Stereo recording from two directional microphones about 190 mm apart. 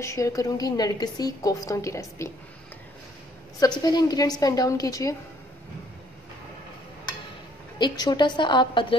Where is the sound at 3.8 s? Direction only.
20° left (ahead or behind).